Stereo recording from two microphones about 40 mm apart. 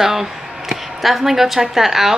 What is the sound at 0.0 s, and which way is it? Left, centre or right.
A woman's voice, centre.